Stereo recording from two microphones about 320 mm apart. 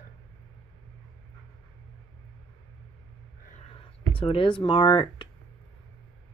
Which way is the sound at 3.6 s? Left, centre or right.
Centre.